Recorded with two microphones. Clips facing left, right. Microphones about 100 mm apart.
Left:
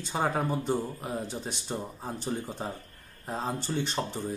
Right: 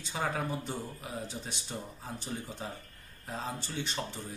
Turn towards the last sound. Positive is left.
turn(degrees=45)  # may be behind; listen again after turning